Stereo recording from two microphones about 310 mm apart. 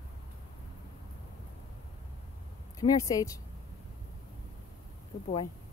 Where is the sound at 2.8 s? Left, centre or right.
Centre.